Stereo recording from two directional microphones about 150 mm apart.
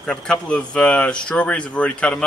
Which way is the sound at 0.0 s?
5° left (ahead or behind).